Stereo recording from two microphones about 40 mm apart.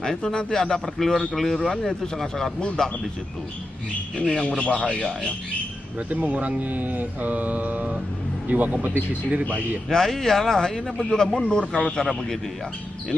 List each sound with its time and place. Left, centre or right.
0.2 s a man's voice: left
4.2 s speech: left
6.0 s speech: right
6.7 s mantra: right
8.8 s speech: right
9.8 s a man's voice: centre; by 12.1 s left